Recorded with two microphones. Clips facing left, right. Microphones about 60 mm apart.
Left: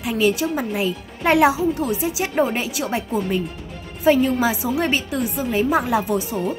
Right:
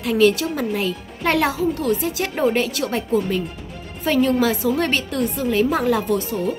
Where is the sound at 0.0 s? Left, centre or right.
Centre.